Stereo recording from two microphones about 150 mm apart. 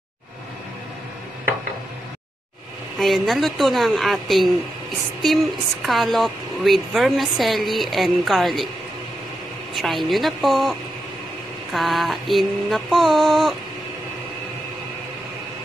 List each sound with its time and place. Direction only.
3.0 s speech: centre (ahead or behind)
9.8 s speech: centre (ahead or behind)